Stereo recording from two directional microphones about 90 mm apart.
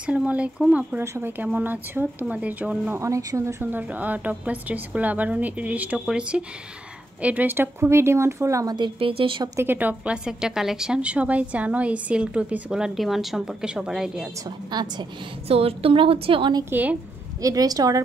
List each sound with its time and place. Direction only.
0.0 s a woman's voice: 15° right (ahead or behind)
0.9 s a woman's voice: 25° right (ahead or behind); by 2.9 s 10° right (ahead or behind)
2.9 s speech: 35° right (ahead or behind)
3.7 s a woman's voice: 20° right (ahead or behind); by 8.7 s 35° right (ahead or behind)
8.7 s speech: 70° right (ahead or behind)
9.6 s a woman's voice: 20° right (ahead or behind)
14.4 s a woman's voice: 50° right (ahead or behind)
15.4 s a woman's voice: 90° right
17.4 s a woman's voice: 40° right (ahead or behind)